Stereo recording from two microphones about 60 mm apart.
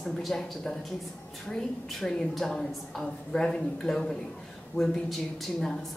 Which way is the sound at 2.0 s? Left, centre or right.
Centre.